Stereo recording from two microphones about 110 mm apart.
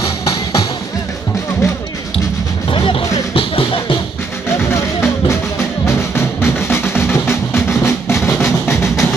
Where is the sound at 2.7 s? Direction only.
55° left (ahead or behind).